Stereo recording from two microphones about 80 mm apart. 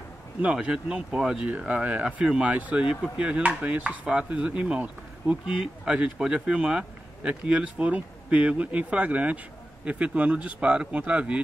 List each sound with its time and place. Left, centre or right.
0.4 s speech: centre